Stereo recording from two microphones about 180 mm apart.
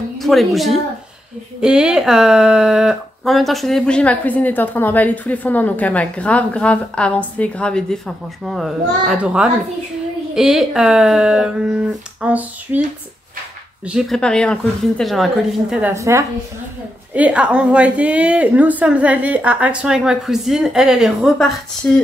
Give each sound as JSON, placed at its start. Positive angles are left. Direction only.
{"t": 0.2, "sound": "a woman's voice", "side_deg": 0}
{"t": 13.8, "sound": "speech", "side_deg": 0}
{"t": 15.9, "sound": "a woman's voice", "side_deg": -15}
{"t": 21.8, "sound": "speech", "side_deg": 10}